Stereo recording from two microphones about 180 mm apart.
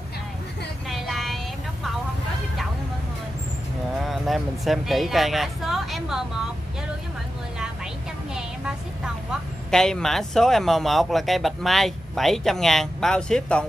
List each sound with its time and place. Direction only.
0.8 s vehicle: centre (ahead or behind)
4.0 s speech: centre (ahead or behind)
8.4 s a sound: 5° right (ahead or behind)
9.7 s speech: 5° left (ahead or behind)